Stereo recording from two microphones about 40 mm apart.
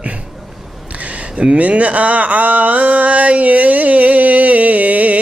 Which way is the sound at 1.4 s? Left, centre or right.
Right.